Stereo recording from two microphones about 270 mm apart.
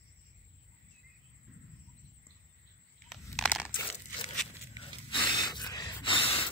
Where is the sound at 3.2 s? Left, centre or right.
Centre.